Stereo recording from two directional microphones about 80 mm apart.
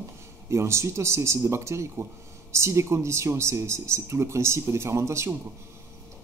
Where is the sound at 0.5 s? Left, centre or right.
Right.